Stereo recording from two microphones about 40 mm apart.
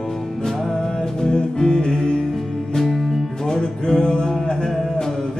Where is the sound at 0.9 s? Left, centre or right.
Centre.